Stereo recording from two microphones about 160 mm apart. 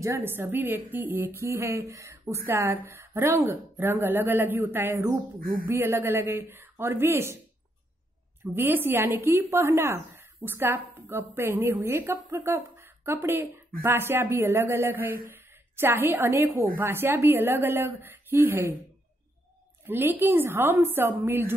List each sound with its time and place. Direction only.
0.0 s speech: 15° right (ahead or behind)
5.4 s speech: 60° right (ahead or behind)
5.7 s speech: 15° right (ahead or behind)
8.5 s a woman's voice: 15° right (ahead or behind)
19.9 s speech: 15° right (ahead or behind)